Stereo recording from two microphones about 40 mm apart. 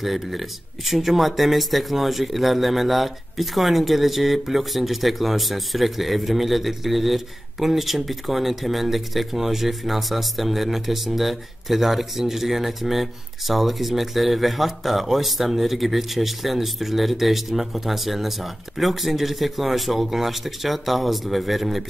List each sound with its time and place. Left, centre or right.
0.0 s speech: centre